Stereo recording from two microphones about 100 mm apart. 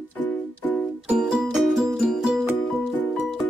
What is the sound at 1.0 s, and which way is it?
Music, 5° right (ahead or behind).